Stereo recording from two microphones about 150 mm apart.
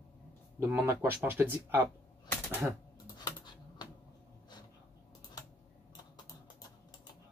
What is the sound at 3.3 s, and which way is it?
Typing, 30° left (ahead or behind).